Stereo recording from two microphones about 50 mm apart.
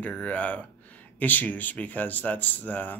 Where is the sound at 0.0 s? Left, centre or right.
Left.